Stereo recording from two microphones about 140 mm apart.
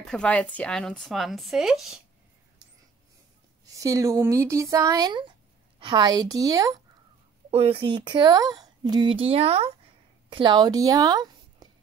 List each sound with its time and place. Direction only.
0.0 s speech: 5° left (ahead or behind)
3.6 s speech: 25° right (ahead or behind)
7.5 s speech: 45° right (ahead or behind)
10.3 s speech: 35° right (ahead or behind)